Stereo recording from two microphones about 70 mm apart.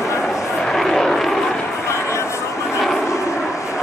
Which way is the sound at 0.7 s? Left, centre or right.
Centre.